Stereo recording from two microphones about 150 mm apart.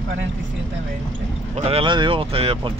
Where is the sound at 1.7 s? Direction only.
35° right (ahead or behind).